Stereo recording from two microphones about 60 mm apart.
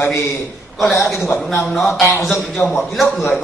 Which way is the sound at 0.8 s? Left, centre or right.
Centre.